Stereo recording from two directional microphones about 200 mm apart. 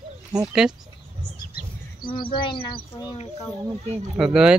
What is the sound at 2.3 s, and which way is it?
Speech, 25° left (ahead or behind).